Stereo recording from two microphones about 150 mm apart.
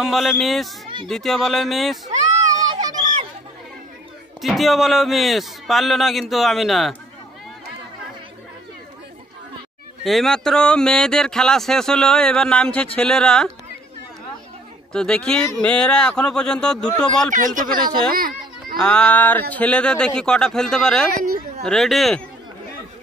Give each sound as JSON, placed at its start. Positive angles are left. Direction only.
{"t": 0.0, "sound": "speech", "side_deg": 0}
{"t": 2.4, "sound": "a sound", "side_deg": -25}
{"t": 4.4, "sound": "speech", "side_deg": 0}
{"t": 10.0, "sound": "speech", "side_deg": 0}
{"t": 14.9, "sound": "speech", "side_deg": 5}
{"t": 17.3, "sound": "speech", "side_deg": -60}
{"t": 18.1, "sound": "children playing", "side_deg": -75}
{"t": 18.8, "sound": "speech", "side_deg": 5}
{"t": 21.2, "sound": "a sound", "side_deg": -70}
{"t": 21.6, "sound": "speech", "side_deg": 0}